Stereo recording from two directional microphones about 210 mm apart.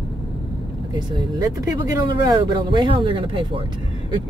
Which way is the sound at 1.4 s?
15° right (ahead or behind).